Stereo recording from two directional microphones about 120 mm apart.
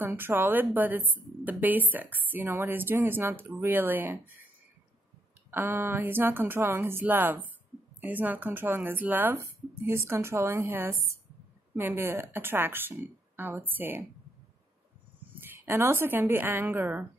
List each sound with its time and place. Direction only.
0.0 s a woman's voice: 15° right (ahead or behind)
5.5 s a woman's voice: 20° right (ahead or behind)
15.4 s speech: 20° right (ahead or behind)